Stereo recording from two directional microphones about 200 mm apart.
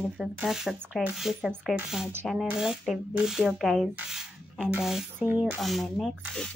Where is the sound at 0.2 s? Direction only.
Centre (ahead or behind).